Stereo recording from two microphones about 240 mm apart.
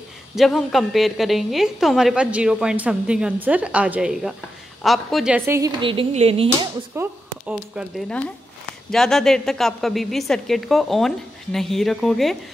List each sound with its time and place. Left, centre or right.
0.4 s a woman's voice: centre; by 6.7 s right
7.0 s a woman's voice: centre